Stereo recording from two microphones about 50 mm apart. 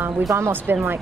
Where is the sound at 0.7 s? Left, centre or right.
Right.